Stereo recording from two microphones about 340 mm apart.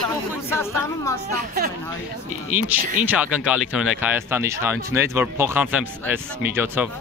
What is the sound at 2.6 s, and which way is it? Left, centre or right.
Speech, centre.